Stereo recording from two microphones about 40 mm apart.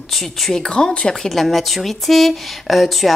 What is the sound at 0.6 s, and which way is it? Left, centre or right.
Speech, left.